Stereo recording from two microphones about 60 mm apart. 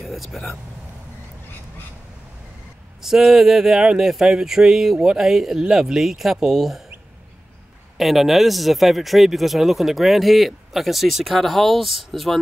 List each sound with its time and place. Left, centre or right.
0.0 s speech: centre
3.0 s speech: centre
8.0 s speech: centre